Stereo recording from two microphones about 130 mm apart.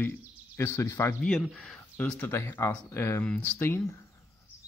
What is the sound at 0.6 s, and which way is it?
Speech, 20° left (ahead or behind).